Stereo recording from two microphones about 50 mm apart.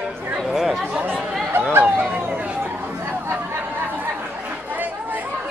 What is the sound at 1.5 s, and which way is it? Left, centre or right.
Chatter, right.